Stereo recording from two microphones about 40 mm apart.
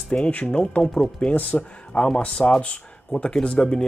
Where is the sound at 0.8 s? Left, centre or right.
Centre.